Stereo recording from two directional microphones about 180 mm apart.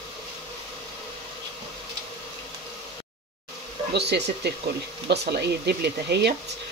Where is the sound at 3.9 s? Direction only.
65° right (ahead or behind).